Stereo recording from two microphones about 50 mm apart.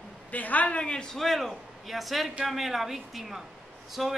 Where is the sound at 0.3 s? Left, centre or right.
Left.